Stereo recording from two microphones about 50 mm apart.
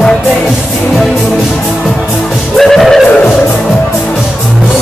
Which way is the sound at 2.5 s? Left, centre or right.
Centre.